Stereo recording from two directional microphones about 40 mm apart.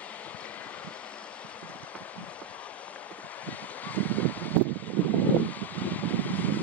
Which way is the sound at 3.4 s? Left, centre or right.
Left.